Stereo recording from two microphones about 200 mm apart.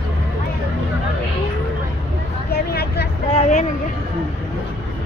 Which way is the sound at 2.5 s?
50° left (ahead or behind).